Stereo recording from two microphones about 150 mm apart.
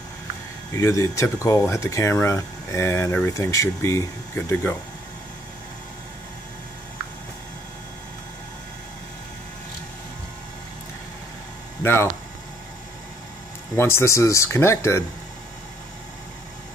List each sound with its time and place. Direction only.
0.7 s speech: 20° left (ahead or behind)
11.8 s speech: 15° left (ahead or behind)
13.7 s speech: 15° left (ahead or behind)